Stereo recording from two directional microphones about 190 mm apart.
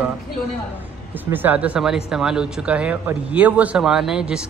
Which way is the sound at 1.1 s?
10° right (ahead or behind).